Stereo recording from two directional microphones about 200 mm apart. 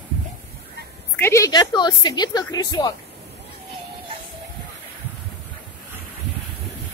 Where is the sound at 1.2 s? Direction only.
15° left (ahead or behind).